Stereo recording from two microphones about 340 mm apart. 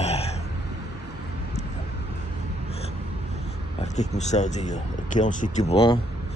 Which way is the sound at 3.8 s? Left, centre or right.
Centre.